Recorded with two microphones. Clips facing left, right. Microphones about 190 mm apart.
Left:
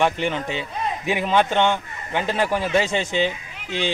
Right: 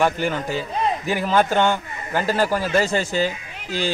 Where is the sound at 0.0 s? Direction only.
5° right (ahead or behind).